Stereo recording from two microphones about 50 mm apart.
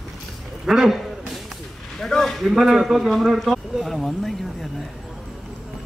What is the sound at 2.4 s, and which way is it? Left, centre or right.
A man's voice, centre.